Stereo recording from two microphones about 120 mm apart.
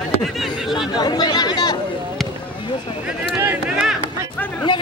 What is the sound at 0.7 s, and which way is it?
Chatter, 40° left (ahead or behind).